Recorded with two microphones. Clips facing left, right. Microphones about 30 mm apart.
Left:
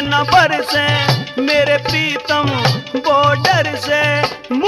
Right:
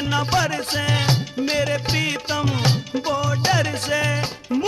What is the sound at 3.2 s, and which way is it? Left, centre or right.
Music, left.